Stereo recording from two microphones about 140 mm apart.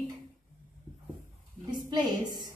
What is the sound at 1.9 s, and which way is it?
Speech, 30° right (ahead or behind).